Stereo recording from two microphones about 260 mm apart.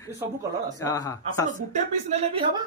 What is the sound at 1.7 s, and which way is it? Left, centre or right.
Speech, right.